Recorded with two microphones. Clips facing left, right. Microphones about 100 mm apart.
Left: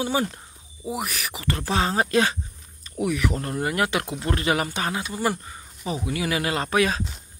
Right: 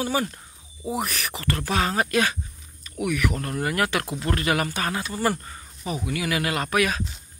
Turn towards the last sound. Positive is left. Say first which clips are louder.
# left 1 dB
turn(degrees=25)  # may be behind; listen again after turning